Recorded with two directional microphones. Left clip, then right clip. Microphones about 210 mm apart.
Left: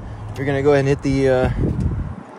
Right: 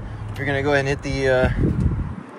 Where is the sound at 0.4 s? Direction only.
40° left (ahead or behind).